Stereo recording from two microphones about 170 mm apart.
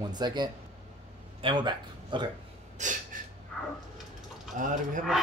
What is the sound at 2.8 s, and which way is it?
Speech, 45° right (ahead or behind).